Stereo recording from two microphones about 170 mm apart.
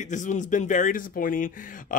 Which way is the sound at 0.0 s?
45° left (ahead or behind).